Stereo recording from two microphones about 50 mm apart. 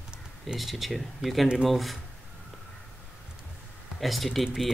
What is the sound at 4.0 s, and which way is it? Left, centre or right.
Speech, centre.